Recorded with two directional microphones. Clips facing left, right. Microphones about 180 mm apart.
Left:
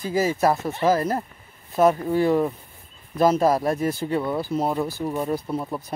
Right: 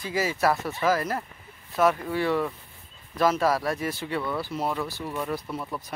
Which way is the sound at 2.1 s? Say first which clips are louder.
Left 6 dB; 45° left (ahead or behind).